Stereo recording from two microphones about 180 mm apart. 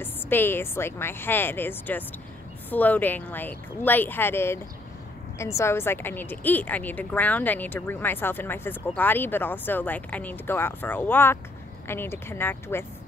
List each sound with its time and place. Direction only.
0.0 s a woman's voice: 10° left (ahead or behind)